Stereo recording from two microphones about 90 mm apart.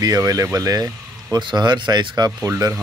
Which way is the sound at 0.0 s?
45° right (ahead or behind).